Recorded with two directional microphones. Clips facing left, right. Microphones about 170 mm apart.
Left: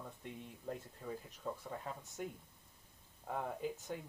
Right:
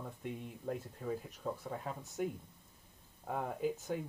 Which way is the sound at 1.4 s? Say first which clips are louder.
Right 3 dB; 10° right (ahead or behind).